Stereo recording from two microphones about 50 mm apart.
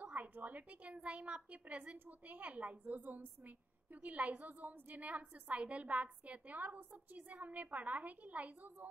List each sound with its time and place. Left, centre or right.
0.0 s a woman's voice: right